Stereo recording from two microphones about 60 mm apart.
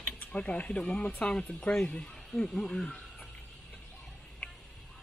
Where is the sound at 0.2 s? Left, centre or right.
Left.